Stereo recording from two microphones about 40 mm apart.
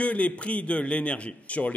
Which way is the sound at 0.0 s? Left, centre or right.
Left.